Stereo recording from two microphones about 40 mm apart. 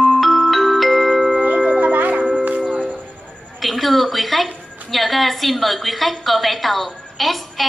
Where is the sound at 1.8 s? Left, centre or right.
Right.